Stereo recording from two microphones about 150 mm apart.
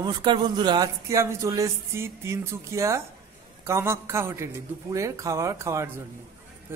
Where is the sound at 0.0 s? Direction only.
30° right (ahead or behind).